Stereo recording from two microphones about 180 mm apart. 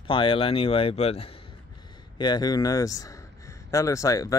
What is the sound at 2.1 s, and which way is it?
Speech, 25° left (ahead or behind).